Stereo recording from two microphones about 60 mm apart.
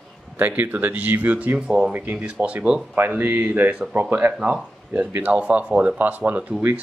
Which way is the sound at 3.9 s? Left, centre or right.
Right.